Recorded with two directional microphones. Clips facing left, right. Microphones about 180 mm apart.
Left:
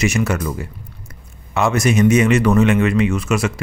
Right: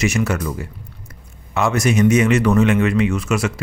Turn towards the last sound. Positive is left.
turn(degrees=20)  # may be behind; listen again after turning